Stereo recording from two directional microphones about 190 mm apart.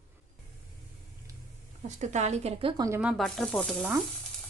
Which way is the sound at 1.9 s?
40° right (ahead or behind).